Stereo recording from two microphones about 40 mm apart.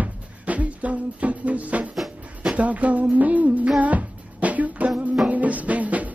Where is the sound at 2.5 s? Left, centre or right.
Right.